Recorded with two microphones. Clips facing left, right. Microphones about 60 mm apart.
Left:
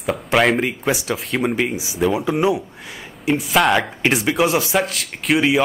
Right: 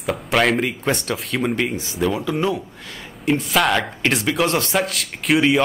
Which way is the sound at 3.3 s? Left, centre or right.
Centre.